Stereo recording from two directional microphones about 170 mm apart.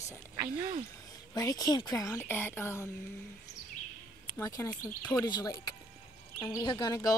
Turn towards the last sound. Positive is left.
turn(degrees=25)  # may be behind; listen again after turning